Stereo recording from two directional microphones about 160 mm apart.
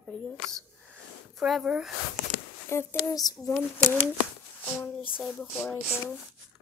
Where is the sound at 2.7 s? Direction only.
15° left (ahead or behind).